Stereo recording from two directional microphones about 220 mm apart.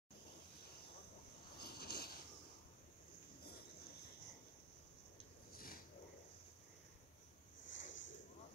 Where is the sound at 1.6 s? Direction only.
45° left (ahead or behind).